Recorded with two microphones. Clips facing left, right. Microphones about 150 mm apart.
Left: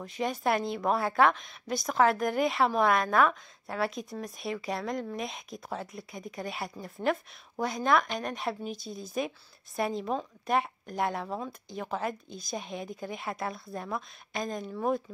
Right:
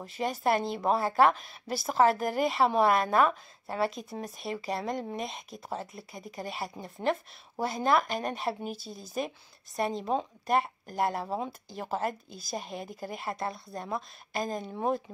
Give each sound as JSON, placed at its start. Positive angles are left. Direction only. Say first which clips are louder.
{"t": 0.0, "sound": "a woman's voice", "louder": "even", "side_deg": 0}
{"t": 0.7, "sound": "speech", "louder": "right 1 dB", "side_deg": -30}
{"t": 1.0, "sound": "a woman's voice", "louder": "right 1 dB", "side_deg": 0}
{"t": 11.2, "sound": "speech", "louder": "right 2 dB", "side_deg": -25}
{"t": 11.7, "sound": "a woman's voice", "louder": "even", "side_deg": -5}
{"t": 14.7, "sound": "speech", "louder": "left 1 dB", "side_deg": -30}